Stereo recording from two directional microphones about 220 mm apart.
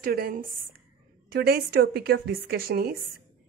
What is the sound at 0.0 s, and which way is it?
A woman's voice, 40° right (ahead or behind).